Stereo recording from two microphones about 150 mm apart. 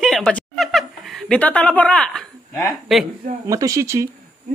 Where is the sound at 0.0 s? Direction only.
5° left (ahead or behind).